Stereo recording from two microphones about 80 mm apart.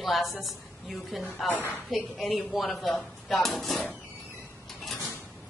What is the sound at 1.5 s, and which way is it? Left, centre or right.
Speech, right.